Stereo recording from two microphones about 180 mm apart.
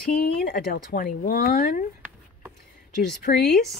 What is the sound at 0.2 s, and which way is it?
Speech, 60° left (ahead or behind).